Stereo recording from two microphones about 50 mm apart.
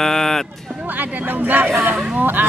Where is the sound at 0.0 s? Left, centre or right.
Centre.